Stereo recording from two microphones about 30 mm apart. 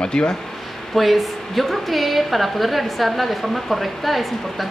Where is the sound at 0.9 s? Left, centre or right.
Centre.